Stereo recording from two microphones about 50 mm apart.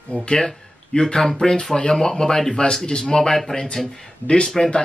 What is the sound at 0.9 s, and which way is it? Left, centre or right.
Speech, centre.